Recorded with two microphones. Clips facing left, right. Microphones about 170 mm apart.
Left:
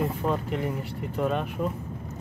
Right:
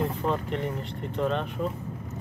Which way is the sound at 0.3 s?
5° left (ahead or behind).